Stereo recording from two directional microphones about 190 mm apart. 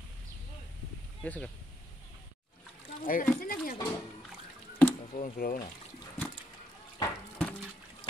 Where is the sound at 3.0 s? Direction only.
45° left (ahead or behind).